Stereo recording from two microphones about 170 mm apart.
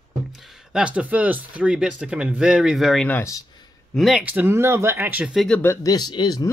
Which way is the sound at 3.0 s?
15° left (ahead or behind).